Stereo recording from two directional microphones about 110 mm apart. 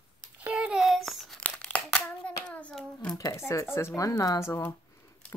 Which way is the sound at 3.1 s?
30° left (ahead or behind).